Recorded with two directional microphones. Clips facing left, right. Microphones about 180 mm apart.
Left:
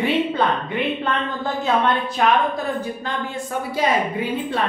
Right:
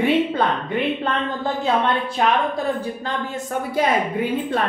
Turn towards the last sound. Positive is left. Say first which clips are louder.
# right 2 dB
turn(degrees=-50)  # may be behind; listen again after turning